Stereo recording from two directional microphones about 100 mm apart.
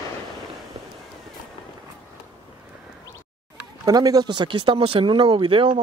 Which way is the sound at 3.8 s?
40° right (ahead or behind).